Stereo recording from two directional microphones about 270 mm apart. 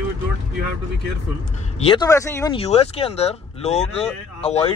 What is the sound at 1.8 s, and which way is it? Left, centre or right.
Speech, centre.